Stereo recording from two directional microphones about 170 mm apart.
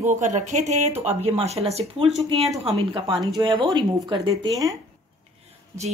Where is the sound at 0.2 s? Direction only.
45° right (ahead or behind); by 4.7 s 20° right (ahead or behind).